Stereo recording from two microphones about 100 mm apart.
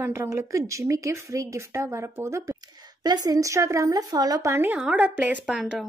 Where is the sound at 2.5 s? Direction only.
40° right (ahead or behind).